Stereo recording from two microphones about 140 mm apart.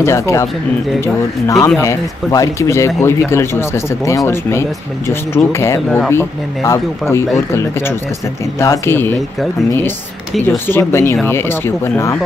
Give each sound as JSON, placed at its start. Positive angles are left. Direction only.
{"t": 0.0, "sound": "speech", "side_deg": 20}
{"t": 5.8, "sound": "speech", "side_deg": 5}
{"t": 6.0, "sound": "speech", "side_deg": 20}
{"t": 8.5, "sound": "speech", "side_deg": 20}
{"t": 10.7, "sound": "speech", "side_deg": 15}